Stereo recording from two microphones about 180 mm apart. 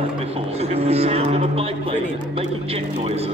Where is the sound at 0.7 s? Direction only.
35° right (ahead or behind).